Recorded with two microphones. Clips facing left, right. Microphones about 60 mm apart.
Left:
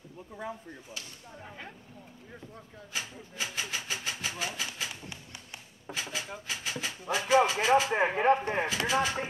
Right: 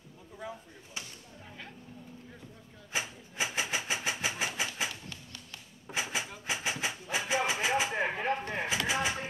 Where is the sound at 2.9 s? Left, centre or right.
Right.